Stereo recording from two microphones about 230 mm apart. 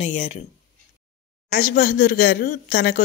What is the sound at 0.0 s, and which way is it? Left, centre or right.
Speech, left.